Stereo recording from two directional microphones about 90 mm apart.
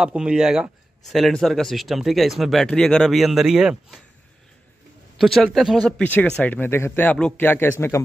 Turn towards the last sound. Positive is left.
turn(degrees=25)  # may be behind; listen again after turning